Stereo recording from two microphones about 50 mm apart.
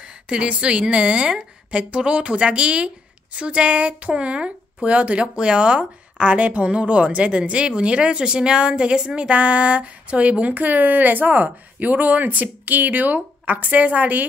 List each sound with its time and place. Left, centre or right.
0.0 s a woman's voice: right